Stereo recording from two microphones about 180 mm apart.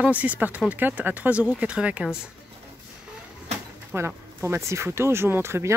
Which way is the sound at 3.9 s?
15° right (ahead or behind).